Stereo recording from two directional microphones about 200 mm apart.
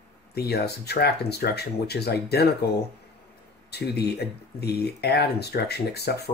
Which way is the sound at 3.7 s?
55° left (ahead or behind).